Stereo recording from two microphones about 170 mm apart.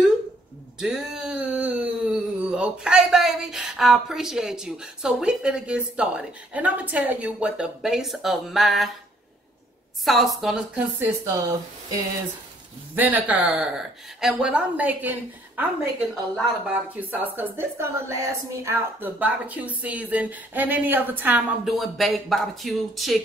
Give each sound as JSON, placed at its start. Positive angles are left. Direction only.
{"t": 0.7, "sound": "a sound", "side_deg": -5}
{"t": 2.5, "sound": "a woman's voice", "side_deg": -5}
{"t": 10.0, "sound": "a woman's voice", "side_deg": 0}
{"t": 11.0, "sound": "speech", "side_deg": -20}
{"t": 12.9, "sound": "a woman's voice", "side_deg": -10}